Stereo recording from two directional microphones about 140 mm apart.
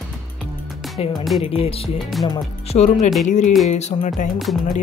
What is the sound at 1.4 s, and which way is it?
Speech, 45° left (ahead or behind).